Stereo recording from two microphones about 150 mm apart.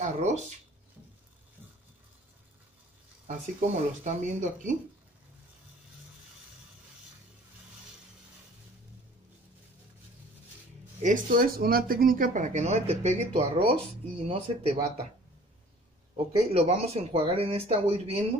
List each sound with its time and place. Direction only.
0.0 s speech: 50° right (ahead or behind)
3.3 s speech: 55° right (ahead or behind)
11.0 s speech: 60° right (ahead or behind); by 14.8 s 40° right (ahead or behind)
16.5 s speech: 45° right (ahead or behind)